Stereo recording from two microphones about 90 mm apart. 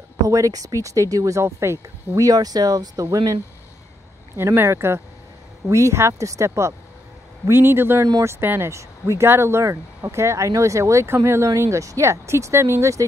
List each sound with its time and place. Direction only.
0.3 s speech: 40° right (ahead or behind)
4.4 s speech: 30° right (ahead or behind)